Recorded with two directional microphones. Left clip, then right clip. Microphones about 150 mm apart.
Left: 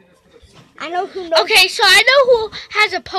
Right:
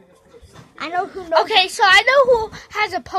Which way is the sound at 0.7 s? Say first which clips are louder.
Left 1 dB; 5° left (ahead or behind).